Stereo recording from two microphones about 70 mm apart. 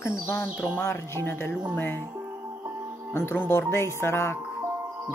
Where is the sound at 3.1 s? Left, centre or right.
Left.